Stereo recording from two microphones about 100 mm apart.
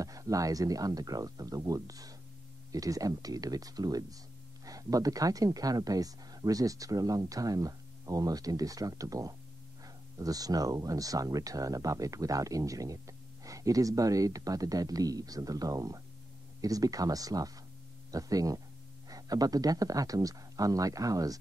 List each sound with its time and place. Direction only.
0.0 s speech: 35° right (ahead or behind)